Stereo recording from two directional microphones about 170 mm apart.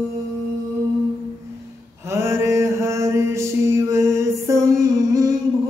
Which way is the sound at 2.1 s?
15° right (ahead or behind).